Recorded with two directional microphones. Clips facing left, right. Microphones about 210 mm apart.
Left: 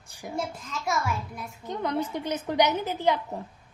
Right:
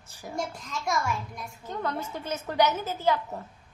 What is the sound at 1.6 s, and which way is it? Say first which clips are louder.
A woman's voice: left 4 dB; 15° left (ahead or behind).